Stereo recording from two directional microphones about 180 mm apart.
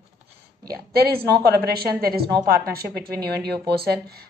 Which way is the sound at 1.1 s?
60° right (ahead or behind).